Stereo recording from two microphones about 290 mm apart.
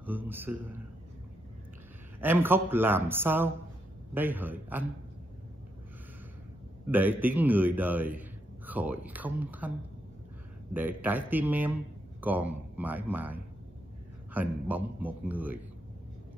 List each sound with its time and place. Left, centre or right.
0.0 s a man's voice: centre
2.1 s a man's voice: centre
6.9 s a man's voice: centre